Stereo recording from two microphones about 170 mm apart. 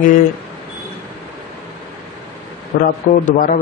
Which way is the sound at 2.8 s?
55° left (ahead or behind).